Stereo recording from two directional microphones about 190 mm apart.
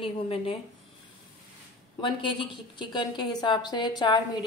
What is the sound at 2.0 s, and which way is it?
A woman's voice, 25° left (ahead or behind).